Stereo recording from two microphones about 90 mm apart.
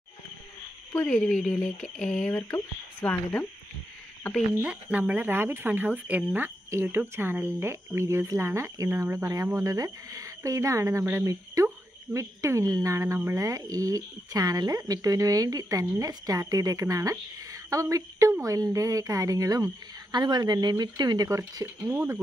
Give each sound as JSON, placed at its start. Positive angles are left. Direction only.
{"t": 1.0, "sound": "speech", "side_deg": 5}
{"t": 2.5, "sound": "speech", "side_deg": 20}
{"t": 4.6, "sound": "a woman's voice", "side_deg": -15}